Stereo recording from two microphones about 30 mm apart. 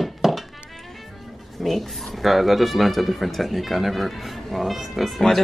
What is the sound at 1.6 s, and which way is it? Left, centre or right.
Speech, centre.